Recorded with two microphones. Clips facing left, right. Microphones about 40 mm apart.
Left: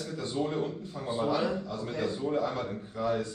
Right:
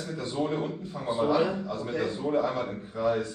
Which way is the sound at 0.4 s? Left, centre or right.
Centre.